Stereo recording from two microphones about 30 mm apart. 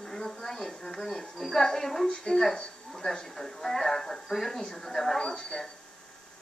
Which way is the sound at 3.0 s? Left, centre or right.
Left.